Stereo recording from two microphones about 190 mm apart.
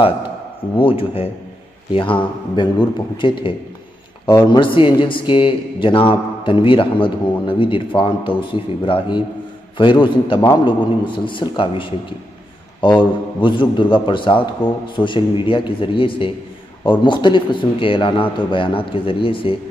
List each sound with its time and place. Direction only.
0.7 s speech: 30° left (ahead or behind)